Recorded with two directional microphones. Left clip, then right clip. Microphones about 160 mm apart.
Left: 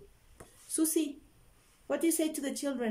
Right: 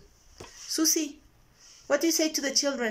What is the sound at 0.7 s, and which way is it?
Speech, 25° left (ahead or behind).